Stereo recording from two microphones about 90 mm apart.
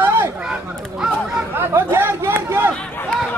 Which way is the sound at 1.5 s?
25° right (ahead or behind).